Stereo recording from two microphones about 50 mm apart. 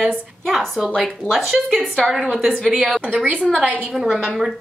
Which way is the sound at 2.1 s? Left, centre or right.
Centre.